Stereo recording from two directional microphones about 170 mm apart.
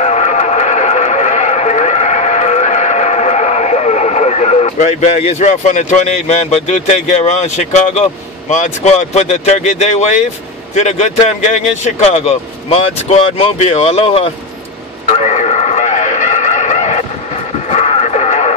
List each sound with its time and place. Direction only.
0.0 s a sound: 40° left (ahead or behind)
10.7 s speech: 45° left (ahead or behind)
15.0 s radio: 40° left (ahead or behind)
17.6 s music: 40° left (ahead or behind)